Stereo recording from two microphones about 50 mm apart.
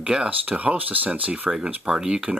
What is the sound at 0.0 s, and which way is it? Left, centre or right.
Speech, right.